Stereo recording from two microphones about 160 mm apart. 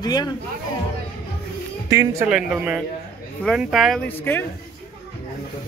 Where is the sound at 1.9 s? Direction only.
20° right (ahead or behind).